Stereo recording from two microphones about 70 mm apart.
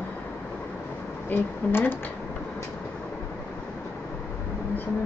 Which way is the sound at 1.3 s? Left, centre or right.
Left.